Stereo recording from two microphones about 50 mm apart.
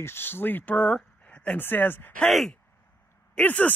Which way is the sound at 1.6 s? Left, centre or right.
Left.